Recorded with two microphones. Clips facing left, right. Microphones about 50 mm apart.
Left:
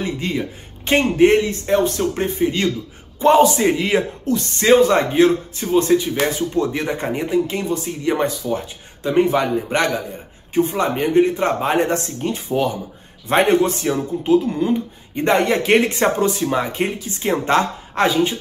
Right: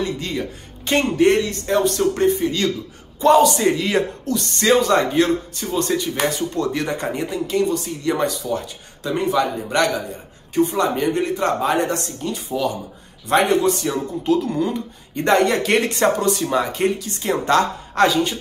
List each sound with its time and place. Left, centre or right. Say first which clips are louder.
0.0 s speech: left 1 dB; centre
13.9 s speech: left 3 dB; centre